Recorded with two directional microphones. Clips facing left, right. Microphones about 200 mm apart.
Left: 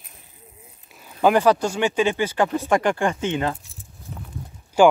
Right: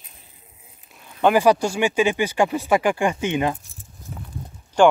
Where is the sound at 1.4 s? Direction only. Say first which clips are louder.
Right 1 dB; 10° right (ahead or behind).